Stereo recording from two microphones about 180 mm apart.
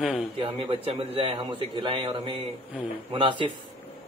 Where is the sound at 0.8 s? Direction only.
30° right (ahead or behind).